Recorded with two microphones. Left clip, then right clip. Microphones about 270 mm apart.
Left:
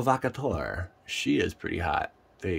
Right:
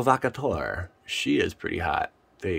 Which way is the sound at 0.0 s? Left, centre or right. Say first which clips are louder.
Right 3 dB; centre.